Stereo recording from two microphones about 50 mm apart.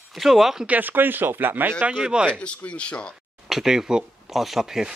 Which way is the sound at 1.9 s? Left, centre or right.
Centre.